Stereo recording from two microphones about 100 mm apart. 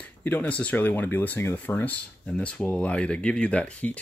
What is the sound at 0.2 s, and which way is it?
Speech, 15° left (ahead or behind).